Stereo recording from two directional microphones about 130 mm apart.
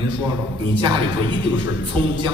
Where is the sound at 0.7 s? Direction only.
35° right (ahead or behind).